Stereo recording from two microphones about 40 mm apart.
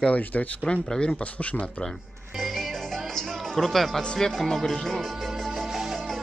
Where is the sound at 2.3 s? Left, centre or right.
Centre.